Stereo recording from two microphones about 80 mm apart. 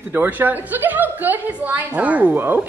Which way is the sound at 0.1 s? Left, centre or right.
Right.